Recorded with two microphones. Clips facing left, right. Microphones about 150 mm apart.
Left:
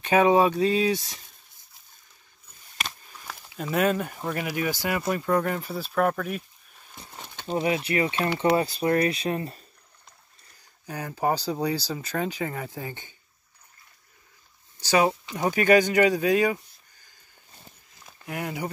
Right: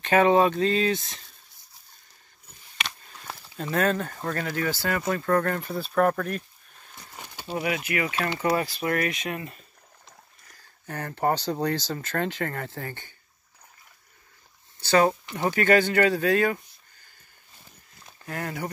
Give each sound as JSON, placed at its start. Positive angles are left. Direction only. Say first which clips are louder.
{"t": 0.0, "sound": "speech", "louder": "even", "side_deg": 10}
{"t": 3.5, "sound": "speech", "louder": "left 1 dB", "side_deg": 10}
{"t": 7.4, "sound": "speech", "louder": "left 3 dB", "side_deg": 30}
{"t": 10.6, "sound": "speech", "louder": "even", "side_deg": 10}
{"t": 14.8, "sound": "speech", "louder": "right 1 dB", "side_deg": 10}
{"t": 18.0, "sound": "speech", "louder": "left 1 dB", "side_deg": 15}